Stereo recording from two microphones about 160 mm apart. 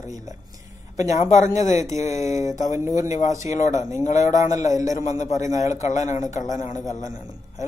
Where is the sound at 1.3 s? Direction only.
50° left (ahead or behind).